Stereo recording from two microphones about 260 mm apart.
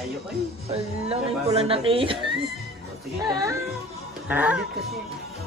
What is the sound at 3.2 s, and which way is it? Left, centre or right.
Speech, centre.